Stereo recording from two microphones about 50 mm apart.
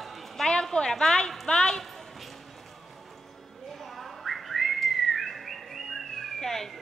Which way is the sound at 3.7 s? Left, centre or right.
Centre.